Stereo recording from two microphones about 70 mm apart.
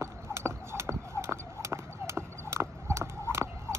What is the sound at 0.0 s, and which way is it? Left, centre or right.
Clip-clop, right.